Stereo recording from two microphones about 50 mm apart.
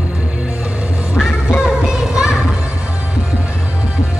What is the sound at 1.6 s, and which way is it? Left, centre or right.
Music, centre.